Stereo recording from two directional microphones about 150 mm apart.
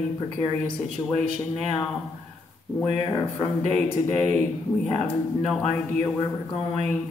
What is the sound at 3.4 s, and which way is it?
Speech, 10° left (ahead or behind).